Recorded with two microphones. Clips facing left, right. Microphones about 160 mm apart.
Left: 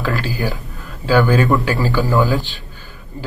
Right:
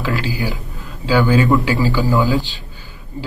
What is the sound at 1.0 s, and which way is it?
Speech, 15° right (ahead or behind).